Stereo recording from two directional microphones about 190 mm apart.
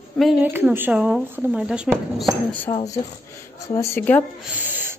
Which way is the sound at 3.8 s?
15° left (ahead or behind).